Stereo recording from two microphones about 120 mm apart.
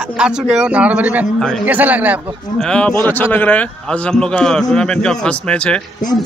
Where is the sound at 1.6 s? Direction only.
15° right (ahead or behind).